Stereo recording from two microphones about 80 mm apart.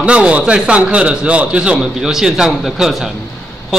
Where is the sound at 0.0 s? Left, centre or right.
Centre.